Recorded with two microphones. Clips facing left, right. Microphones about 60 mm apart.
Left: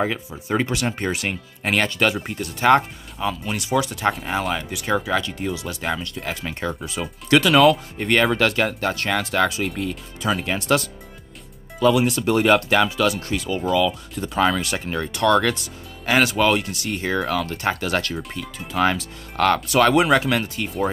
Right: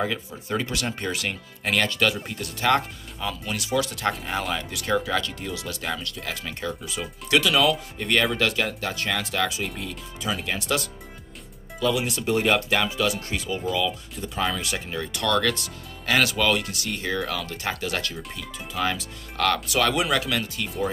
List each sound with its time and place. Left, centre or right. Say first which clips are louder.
0.0 s speech: left 3 dB; left
6.8 s speech: left 4 dB; left
10.4 s speech: left 6 dB; left
11.8 s speech: left 7 dB; left
16.1 s speech: left 4 dB; left